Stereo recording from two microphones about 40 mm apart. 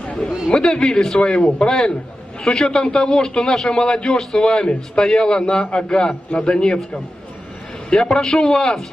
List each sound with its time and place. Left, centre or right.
0.0 s chatter: left
0.5 s a man's voice: centre
8.0 s a man's voice: centre